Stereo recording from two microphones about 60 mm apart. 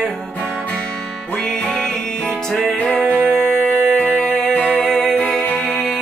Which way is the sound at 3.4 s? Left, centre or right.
Centre.